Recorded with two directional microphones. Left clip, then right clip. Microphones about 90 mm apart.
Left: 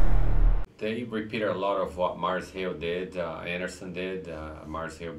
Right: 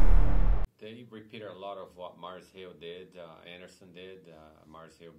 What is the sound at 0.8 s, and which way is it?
Speech, 25° left (ahead or behind).